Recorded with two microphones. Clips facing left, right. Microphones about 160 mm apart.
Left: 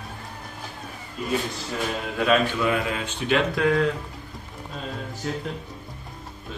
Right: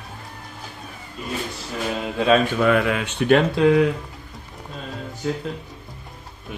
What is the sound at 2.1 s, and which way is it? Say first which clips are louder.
Speech: right 3 dB; 30° right (ahead or behind).